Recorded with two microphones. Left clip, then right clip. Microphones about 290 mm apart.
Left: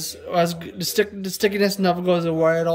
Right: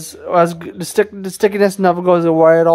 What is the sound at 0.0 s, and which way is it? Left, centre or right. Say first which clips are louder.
Speech: right 8 dB; centre.